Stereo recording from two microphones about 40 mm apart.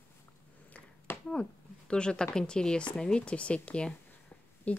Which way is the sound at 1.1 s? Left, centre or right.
Left.